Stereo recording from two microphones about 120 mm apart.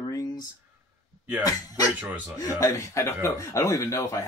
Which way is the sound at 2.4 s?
25° left (ahead or behind).